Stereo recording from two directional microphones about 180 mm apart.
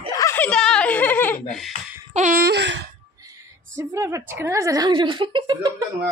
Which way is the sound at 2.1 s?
50° right (ahead or behind).